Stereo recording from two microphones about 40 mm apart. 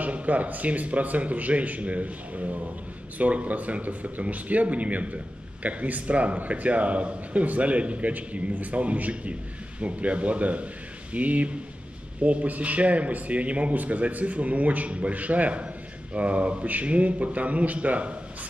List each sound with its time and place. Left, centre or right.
0.0 s speech: right